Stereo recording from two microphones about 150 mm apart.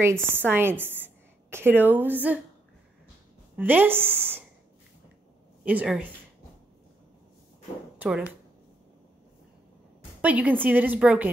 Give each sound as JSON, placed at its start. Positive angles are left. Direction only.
{"t": 0.0, "sound": "a woman's voice", "side_deg": -15}
{"t": 3.5, "sound": "a woman's voice", "side_deg": -10}
{"t": 5.7, "sound": "a woman's voice", "side_deg": -10}
{"t": 8.0, "sound": "a woman's voice", "side_deg": -10}
{"t": 10.2, "sound": "a woman's voice", "side_deg": -10}